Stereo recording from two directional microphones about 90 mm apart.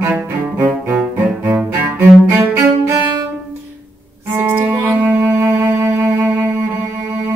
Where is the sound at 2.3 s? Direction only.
30° right (ahead or behind).